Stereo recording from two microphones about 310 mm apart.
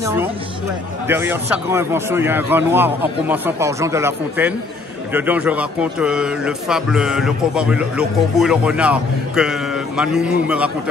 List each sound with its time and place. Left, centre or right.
0.0 s a man's voice: centre